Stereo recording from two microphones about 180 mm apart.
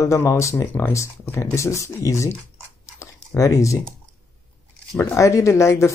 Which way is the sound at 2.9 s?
15° left (ahead or behind).